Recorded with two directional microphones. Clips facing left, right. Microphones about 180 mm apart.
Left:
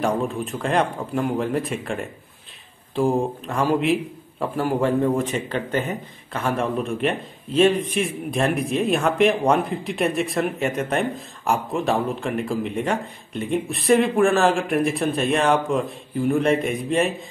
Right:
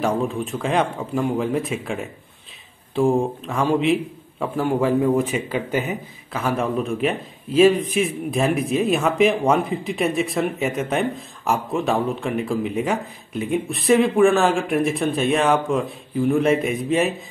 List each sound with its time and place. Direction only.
0.0 s a man's voice: centre (ahead or behind)